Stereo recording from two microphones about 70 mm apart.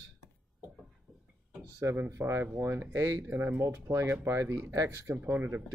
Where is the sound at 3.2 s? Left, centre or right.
Right.